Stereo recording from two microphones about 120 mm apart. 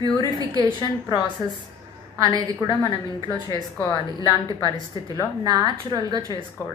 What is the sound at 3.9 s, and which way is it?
A woman's voice, 35° left (ahead or behind).